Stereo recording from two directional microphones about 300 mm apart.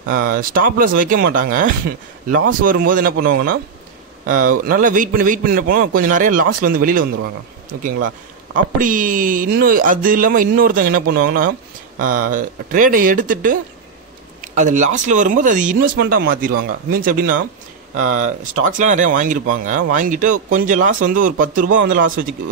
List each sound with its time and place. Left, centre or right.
0.1 s speech: right
4.6 s speech: right
8.7 s speech: right